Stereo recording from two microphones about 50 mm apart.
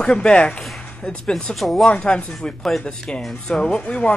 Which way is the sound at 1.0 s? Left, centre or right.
Centre.